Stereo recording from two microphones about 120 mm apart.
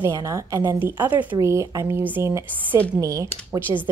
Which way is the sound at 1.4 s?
25° right (ahead or behind).